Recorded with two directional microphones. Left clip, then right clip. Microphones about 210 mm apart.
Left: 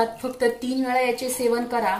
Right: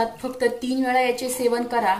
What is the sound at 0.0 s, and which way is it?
A woman's voice, 5° right (ahead or behind).